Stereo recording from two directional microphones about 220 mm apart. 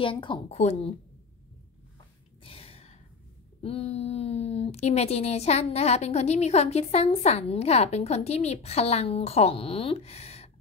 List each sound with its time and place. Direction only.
0.0 s a woman's voice: 25° left (ahead or behind)
2.4 s gasp: 25° left (ahead or behind)
3.6 s a woman's voice: 25° left (ahead or behind)